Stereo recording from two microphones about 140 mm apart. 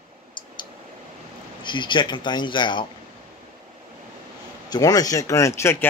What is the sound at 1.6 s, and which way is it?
A man's voice, 35° left (ahead or behind).